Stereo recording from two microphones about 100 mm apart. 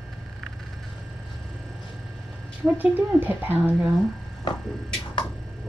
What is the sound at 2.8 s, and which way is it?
Speech, 15° right (ahead or behind).